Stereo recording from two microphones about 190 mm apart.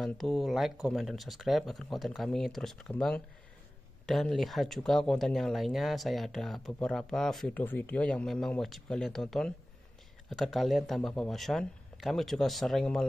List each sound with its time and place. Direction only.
0.0 s speech: centre (ahead or behind)